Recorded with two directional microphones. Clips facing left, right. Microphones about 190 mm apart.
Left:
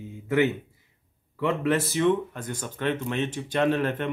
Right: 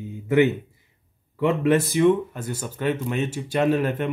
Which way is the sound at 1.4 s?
15° right (ahead or behind).